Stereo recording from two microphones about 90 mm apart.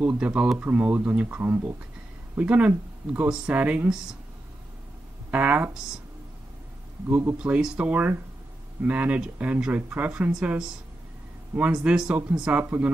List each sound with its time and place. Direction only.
0.0 s speech: 15° right (ahead or behind)
5.3 s speech: 20° right (ahead or behind)
7.1 s speech: 20° right (ahead or behind)